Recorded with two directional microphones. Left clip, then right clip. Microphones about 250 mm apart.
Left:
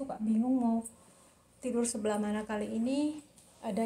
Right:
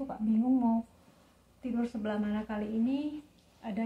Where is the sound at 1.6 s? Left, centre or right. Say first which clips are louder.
Left 3 dB; left.